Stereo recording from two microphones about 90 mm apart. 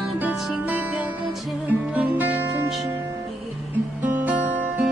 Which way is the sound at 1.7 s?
20° right (ahead or behind).